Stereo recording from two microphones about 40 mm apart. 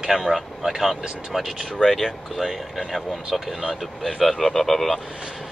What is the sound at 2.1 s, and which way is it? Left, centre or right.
Speech, centre.